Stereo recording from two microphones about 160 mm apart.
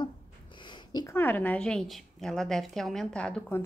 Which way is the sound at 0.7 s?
25° left (ahead or behind).